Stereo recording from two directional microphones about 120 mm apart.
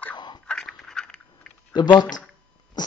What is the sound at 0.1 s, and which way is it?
Biting, 40° left (ahead or behind).